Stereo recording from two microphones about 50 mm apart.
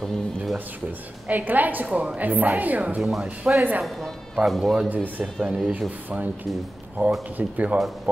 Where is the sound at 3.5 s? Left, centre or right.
Right.